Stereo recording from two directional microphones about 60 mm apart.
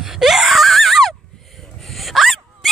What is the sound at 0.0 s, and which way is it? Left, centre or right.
Wail, centre.